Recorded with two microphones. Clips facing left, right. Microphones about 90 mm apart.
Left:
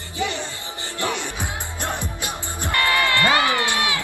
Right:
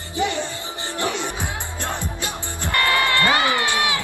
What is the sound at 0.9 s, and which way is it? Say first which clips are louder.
Music: right 1 dB; 20° right (ahead or behind).